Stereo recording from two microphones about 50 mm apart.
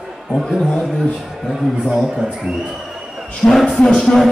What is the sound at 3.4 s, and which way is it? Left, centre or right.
Speech, left.